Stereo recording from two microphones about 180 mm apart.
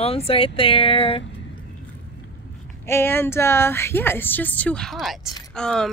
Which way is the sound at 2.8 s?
15° left (ahead or behind).